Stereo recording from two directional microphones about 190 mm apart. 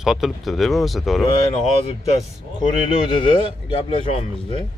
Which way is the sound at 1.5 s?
35° left (ahead or behind).